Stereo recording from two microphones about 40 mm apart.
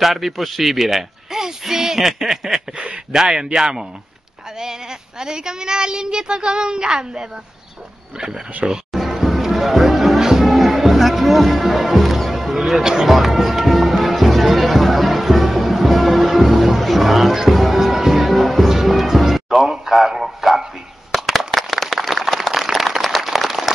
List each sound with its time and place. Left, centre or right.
0.0 s speech: centre
5.2 s a woman's voice: centre
8.6 s speech: centre
8.9 s music: centre
17.7 s speech: centre
19.2 s music: centre
19.6 s speech: centre
21.1 s a sound: centre